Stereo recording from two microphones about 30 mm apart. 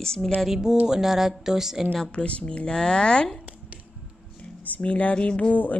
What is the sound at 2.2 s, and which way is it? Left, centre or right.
Speech, left.